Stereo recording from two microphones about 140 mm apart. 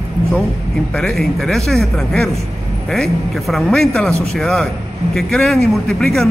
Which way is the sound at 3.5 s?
5° left (ahead or behind).